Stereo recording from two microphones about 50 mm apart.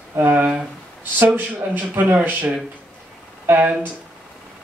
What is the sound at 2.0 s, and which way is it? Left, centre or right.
Speech, right.